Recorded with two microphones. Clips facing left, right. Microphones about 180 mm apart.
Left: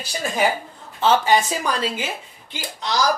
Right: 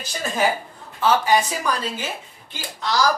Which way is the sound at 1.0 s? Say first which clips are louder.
Left 1 dB; 25° left (ahead or behind).